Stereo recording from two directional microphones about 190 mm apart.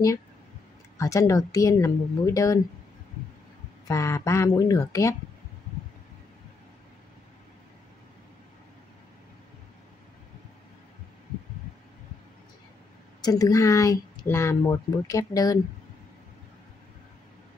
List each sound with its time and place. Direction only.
0.9 s speech: 15° left (ahead or behind)
3.8 s speech: 15° left (ahead or behind)
13.2 s speech: 20° left (ahead or behind)